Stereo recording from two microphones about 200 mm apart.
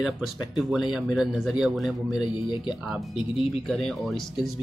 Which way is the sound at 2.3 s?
25° left (ahead or behind).